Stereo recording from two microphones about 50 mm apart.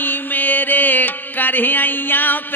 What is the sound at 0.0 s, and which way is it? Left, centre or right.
Music, left.